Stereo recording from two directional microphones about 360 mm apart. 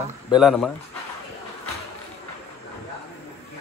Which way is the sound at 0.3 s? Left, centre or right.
Centre.